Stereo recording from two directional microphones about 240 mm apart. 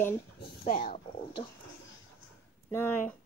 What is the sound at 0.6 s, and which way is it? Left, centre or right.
Speech, left.